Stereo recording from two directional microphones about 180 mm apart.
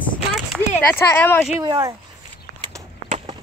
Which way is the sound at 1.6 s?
20° right (ahead or behind).